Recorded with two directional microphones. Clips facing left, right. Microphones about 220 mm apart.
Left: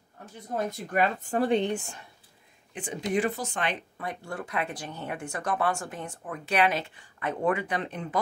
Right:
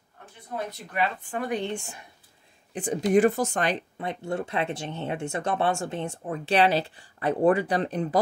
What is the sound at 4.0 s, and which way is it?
Speech, 25° right (ahead or behind).